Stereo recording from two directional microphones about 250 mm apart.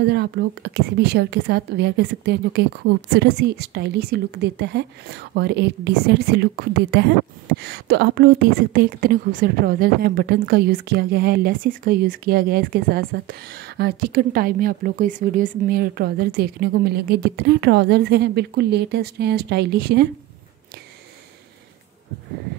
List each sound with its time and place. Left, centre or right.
0.0 s a woman's voice: right